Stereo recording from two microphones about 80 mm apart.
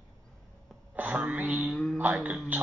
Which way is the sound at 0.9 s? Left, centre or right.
Centre.